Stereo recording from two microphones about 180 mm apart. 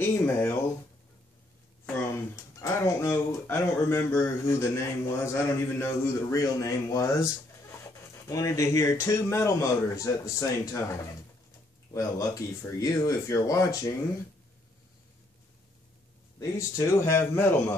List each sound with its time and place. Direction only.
0.0 s speech: 15° left (ahead or behind)
2.1 s speech: 15° left (ahead or behind)
11.9 s speech: 20° left (ahead or behind)
16.3 s speech: 15° left (ahead or behind)